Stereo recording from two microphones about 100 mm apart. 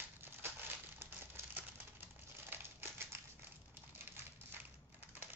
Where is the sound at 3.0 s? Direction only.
25° right (ahead or behind).